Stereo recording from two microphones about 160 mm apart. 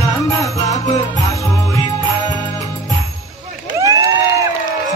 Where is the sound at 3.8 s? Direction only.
20° right (ahead or behind).